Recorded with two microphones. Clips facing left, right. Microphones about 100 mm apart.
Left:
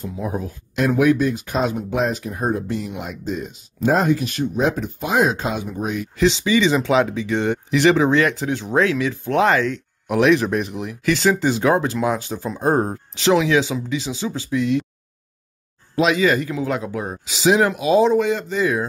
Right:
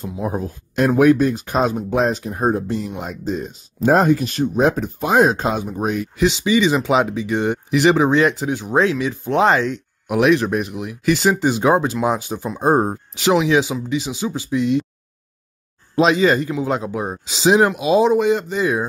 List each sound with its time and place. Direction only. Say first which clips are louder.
0.2 s speech: right 3 dB; 35° right (ahead or behind)
6.1 s speech: left 1 dB; 15° right (ahead or behind)
10.0 s speech: even; 10° right (ahead or behind)
11.1 s speech: right 1 dB; 15° right (ahead or behind)
16.0 s speech: right 2 dB; 30° right (ahead or behind)